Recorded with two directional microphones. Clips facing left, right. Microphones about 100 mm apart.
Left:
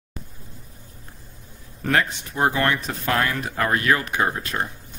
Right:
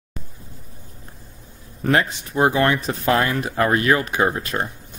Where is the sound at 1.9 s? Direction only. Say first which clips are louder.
Right 3 dB; 15° right (ahead or behind).